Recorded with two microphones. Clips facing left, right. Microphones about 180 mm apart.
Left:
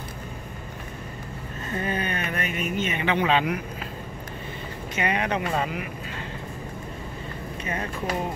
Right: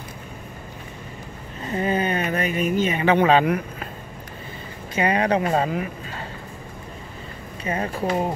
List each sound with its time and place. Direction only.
1.8 s a sound: 30° right (ahead or behind)
3.2 s speech: 45° right (ahead or behind)
4.9 s speech: 35° right (ahead or behind)
7.6 s speech: 30° right (ahead or behind)